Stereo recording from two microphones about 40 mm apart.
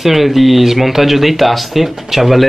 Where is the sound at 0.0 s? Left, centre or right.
Centre.